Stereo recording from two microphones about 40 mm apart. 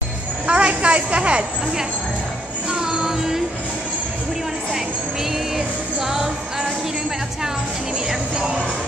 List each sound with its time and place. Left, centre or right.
0.5 s a sound: right
2.7 s music: centre
6.0 s music: centre